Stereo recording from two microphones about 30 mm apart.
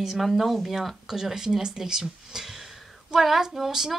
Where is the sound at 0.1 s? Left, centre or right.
Centre.